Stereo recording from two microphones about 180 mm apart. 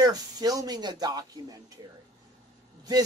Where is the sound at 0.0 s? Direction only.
20° right (ahead or behind).